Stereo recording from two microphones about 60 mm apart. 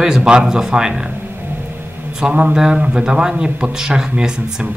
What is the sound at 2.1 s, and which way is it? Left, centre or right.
Speech, centre.